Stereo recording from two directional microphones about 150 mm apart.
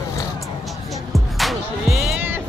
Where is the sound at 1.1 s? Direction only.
Centre (ahead or behind).